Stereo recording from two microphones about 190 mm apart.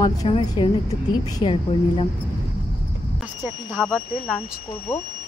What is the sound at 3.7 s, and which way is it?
Speech, 5° left (ahead or behind).